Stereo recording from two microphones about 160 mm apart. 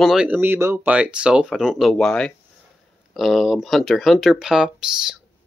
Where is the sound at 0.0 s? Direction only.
5° right (ahead or behind).